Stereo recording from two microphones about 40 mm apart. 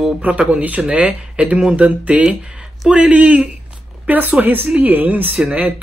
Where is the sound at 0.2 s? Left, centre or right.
Right.